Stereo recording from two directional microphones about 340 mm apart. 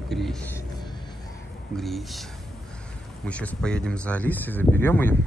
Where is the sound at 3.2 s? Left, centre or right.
Centre.